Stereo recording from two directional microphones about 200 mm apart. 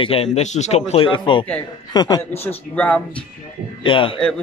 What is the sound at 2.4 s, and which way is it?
Speech, 10° left (ahead or behind).